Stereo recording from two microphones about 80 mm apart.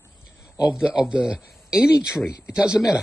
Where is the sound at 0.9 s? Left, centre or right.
Centre.